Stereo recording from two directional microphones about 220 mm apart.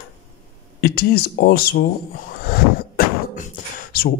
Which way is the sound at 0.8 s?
45° left (ahead or behind).